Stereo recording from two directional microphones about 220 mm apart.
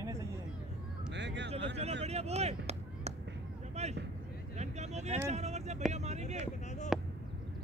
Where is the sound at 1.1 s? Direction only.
55° right (ahead or behind).